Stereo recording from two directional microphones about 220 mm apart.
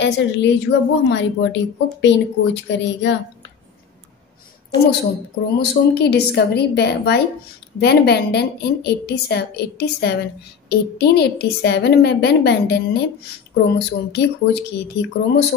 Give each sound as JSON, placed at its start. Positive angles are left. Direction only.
{"t": 0.0, "sound": "speech", "side_deg": 55}
{"t": 5.6, "sound": "speech", "side_deg": 50}